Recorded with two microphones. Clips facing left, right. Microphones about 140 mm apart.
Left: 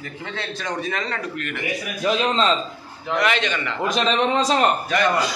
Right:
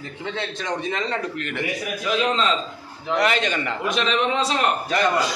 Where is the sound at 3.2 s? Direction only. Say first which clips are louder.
Even; 40° right (ahead or behind).